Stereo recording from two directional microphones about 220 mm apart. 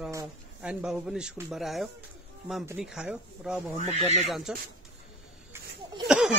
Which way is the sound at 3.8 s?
30° right (ahead or behind).